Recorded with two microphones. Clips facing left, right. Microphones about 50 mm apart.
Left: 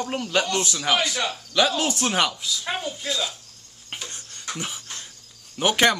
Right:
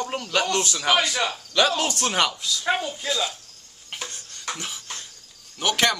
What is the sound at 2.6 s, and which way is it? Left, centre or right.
Speech, right.